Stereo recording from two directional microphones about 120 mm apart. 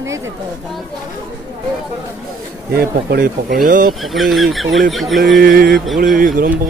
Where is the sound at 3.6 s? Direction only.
Centre (ahead or behind).